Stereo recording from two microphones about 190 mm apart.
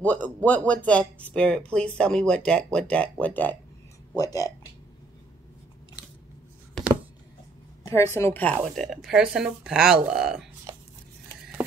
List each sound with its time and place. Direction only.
0.0 s speech: 10° left (ahead or behind)
7.8 s speech: 15° left (ahead or behind); by 10.5 s 5° right (ahead or behind)